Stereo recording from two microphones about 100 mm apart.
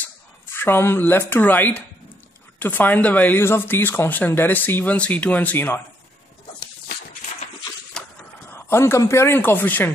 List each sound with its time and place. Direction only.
0.5 s speech: 20° left (ahead or behind)
8.0 s a sound: 5° left (ahead or behind)
8.5 s speech: 25° left (ahead or behind)